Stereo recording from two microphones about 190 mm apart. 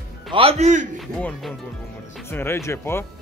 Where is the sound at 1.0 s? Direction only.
5° left (ahead or behind).